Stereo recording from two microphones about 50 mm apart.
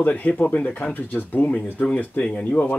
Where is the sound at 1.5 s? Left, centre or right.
Left.